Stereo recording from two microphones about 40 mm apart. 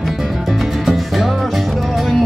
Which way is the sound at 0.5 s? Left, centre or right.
Centre.